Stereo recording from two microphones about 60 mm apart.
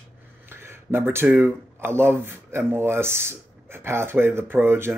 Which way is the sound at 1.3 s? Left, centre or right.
Right.